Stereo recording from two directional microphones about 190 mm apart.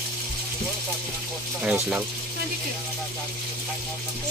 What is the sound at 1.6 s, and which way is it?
Speech, 5° right (ahead or behind).